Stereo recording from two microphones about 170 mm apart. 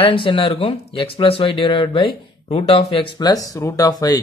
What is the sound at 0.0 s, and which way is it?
Speech, 30° left (ahead or behind).